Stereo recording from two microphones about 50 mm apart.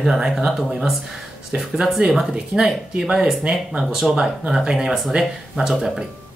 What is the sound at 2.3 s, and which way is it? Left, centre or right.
Speech, centre.